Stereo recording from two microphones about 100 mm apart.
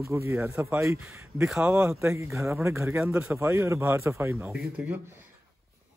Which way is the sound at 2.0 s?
30° right (ahead or behind).